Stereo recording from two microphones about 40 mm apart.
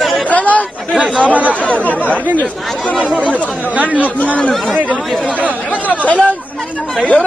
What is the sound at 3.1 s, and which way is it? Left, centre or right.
Speech, right.